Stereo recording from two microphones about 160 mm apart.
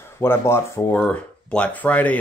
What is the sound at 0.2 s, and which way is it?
Speech, 15° left (ahead or behind).